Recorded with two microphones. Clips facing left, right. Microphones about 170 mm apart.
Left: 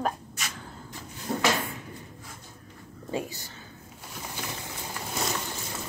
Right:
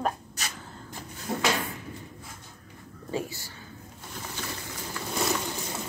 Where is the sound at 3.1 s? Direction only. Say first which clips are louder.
Even; 20° left (ahead or behind).